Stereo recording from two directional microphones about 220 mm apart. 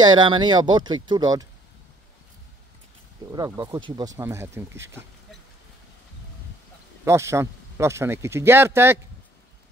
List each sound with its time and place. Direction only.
0.0 s speech: 20° right (ahead or behind)
3.3 s speech: 15° right (ahead or behind)
7.1 s speech: 15° right (ahead or behind)